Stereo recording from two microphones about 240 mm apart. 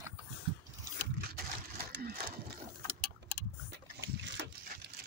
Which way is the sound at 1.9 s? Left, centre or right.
Right.